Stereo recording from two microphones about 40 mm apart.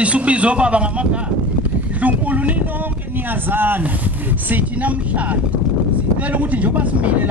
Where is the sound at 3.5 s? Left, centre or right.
Right.